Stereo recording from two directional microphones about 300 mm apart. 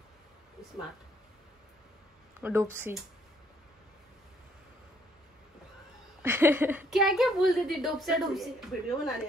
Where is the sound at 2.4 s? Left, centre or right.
Centre.